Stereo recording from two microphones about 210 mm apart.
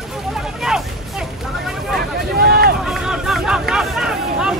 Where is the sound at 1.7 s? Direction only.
Centre (ahead or behind).